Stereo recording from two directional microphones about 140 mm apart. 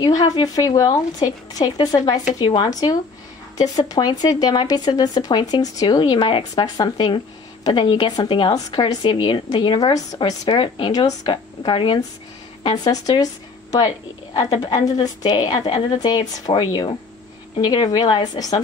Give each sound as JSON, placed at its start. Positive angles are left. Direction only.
{"t": 0.0, "sound": "a woman's voice", "side_deg": 25}
{"t": 13.0, "sound": "a woman's voice", "side_deg": 25}